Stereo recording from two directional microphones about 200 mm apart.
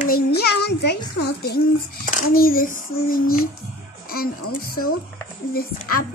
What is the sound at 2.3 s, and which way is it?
A child's voice, 45° left (ahead or behind).